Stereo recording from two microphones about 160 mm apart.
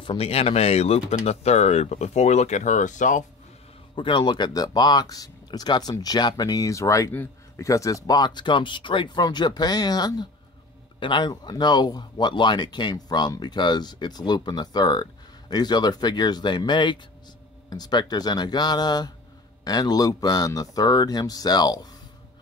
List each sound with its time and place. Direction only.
0.0 s speech: 35° left (ahead or behind); by 3.3 s 50° left (ahead or behind)
3.9 s speech: 30° left (ahead or behind)